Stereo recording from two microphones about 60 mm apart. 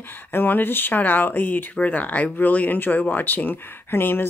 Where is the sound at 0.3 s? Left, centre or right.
Left.